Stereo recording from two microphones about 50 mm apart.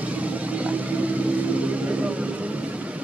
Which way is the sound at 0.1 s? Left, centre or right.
Right.